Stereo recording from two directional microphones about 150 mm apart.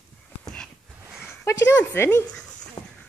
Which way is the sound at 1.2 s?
15° left (ahead or behind).